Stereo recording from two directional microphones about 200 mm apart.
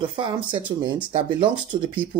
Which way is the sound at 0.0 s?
25° right (ahead or behind).